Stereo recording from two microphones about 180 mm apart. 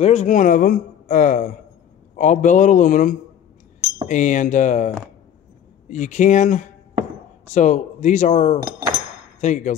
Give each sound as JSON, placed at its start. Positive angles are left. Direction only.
{"t": 0.0, "sound": "a man's voice", "side_deg": 35}